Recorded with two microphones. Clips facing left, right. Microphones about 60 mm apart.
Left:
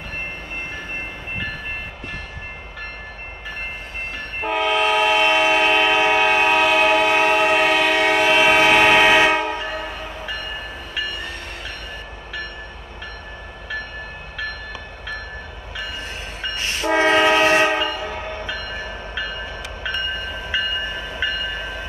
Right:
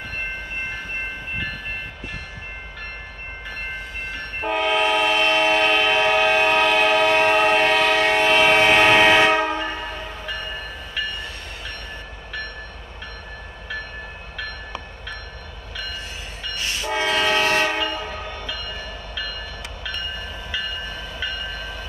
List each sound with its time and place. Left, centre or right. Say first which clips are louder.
4.5 s train: left 1 dB; centre
16.3 s train: left 2 dB; left